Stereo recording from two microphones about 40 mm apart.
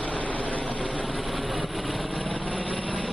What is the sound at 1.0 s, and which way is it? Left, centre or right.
Vehicle, centre.